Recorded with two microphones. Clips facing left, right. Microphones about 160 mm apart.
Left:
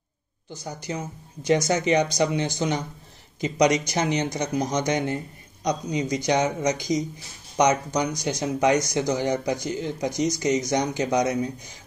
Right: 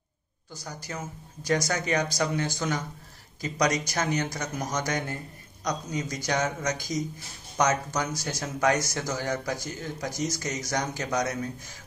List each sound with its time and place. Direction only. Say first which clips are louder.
0.5 s speech: left 6 dB; 20° left (ahead or behind)